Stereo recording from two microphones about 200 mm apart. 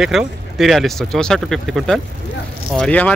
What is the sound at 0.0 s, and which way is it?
Speech, centre (ahead or behind).